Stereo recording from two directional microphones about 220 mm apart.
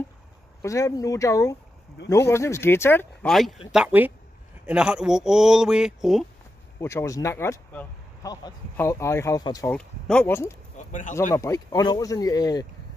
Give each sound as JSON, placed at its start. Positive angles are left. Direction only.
{"t": 0.6, "sound": "speech", "side_deg": 15}
{"t": 6.8, "sound": "speech", "side_deg": 10}
{"t": 9.7, "sound": "speech", "side_deg": 5}
{"t": 10.8, "sound": "speech", "side_deg": 35}
{"t": 11.3, "sound": "speech", "side_deg": 15}